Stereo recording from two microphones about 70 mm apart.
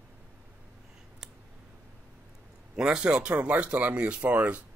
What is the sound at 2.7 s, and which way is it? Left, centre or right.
Speech, centre.